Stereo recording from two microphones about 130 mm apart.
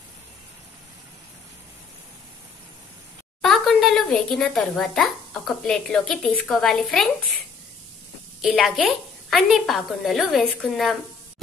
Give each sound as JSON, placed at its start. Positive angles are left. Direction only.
{"t": 3.4, "sound": "speech", "side_deg": 0}
{"t": 8.4, "sound": "a woman's voice", "side_deg": -5}